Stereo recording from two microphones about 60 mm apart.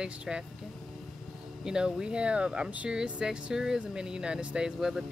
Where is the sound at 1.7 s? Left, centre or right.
Centre.